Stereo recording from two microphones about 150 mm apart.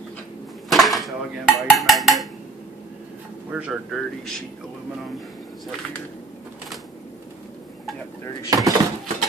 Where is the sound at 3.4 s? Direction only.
10° right (ahead or behind).